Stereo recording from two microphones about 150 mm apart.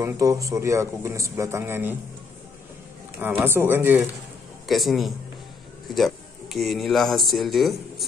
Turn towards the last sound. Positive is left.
turn(degrees=0)  # may be behind; listen again after turning